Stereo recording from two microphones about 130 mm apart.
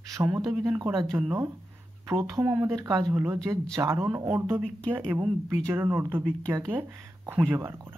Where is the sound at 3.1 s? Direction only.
20° right (ahead or behind).